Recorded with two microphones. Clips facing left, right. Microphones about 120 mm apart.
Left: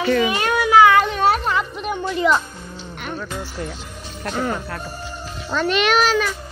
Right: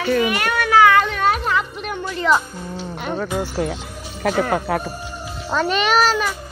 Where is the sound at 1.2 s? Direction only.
30° left (ahead or behind).